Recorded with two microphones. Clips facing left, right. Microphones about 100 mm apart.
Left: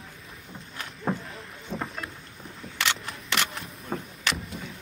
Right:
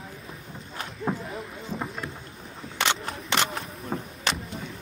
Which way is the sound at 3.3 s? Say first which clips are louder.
Right 3 dB; 35° right (ahead or behind).